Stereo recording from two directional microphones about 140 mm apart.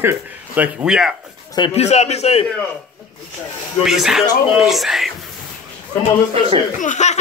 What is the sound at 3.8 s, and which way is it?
Speech, 5° right (ahead or behind).